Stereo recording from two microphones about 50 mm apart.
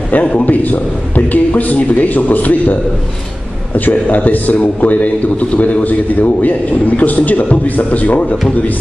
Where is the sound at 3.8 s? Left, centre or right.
Left.